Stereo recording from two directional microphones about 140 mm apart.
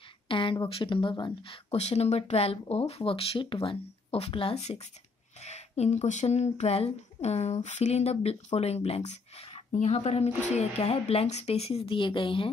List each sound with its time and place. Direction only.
0.3 s speech: 40° left (ahead or behind)